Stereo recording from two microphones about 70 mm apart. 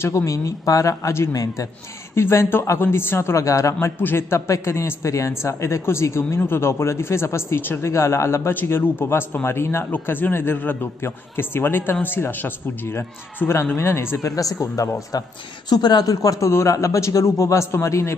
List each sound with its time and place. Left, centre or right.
0.0 s a man's voice: left
1.3 s a man's voice: left
2.1 s a man's voice: left
2.8 s a man's voice: left
4.0 s a man's voice: left
9.8 s a man's voice: left
15.7 s a man's voice: left